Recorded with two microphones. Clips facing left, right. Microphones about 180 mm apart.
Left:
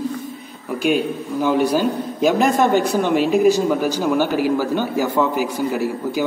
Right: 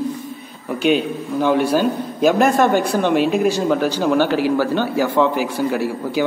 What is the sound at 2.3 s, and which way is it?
Speech, 55° right (ahead or behind).